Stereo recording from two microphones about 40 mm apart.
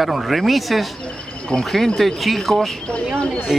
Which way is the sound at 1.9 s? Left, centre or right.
Centre.